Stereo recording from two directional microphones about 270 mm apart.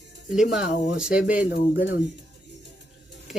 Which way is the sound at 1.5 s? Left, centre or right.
Left.